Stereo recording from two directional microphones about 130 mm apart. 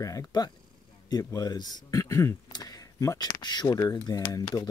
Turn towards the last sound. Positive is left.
turn(degrees=25)  # may be behind; listen again after turning